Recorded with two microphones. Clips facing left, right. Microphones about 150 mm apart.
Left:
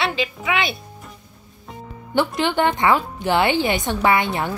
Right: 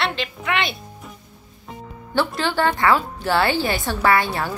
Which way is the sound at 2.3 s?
20° left (ahead or behind).